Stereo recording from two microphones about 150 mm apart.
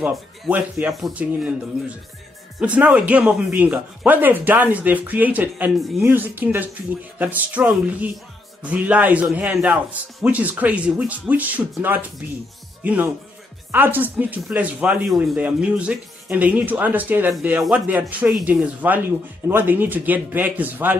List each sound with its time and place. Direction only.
0.0 s speech: 10° right (ahead or behind)
2.6 s speech: 10° right (ahead or behind)